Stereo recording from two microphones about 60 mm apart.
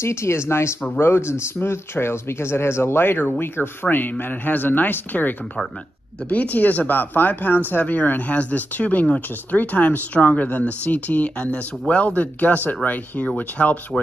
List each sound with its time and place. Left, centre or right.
0.0 s speech: left